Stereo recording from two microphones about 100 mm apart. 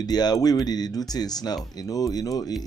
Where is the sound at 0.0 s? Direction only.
40° left (ahead or behind).